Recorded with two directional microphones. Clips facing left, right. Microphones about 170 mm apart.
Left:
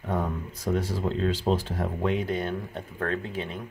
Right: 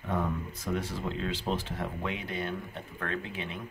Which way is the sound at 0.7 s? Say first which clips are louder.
Left 6 dB; 35° left (ahead or behind).